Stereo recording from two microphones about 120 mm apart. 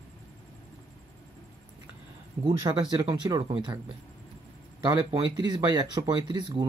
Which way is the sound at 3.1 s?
45° right (ahead or behind).